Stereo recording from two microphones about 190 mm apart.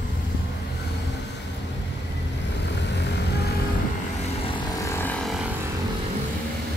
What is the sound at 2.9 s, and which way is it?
Vehicle, 65° left (ahead or behind).